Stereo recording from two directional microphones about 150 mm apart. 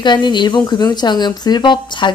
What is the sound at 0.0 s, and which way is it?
Speech, 30° left (ahead or behind).